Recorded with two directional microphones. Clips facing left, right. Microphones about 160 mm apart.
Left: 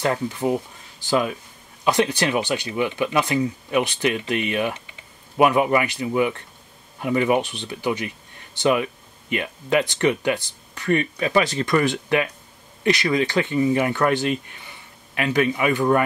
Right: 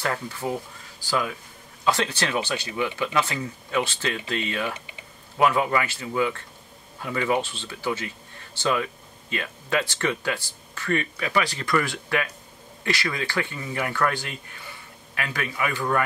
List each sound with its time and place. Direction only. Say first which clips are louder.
0.0 s speech: left 6 dB; 20° left (ahead or behind)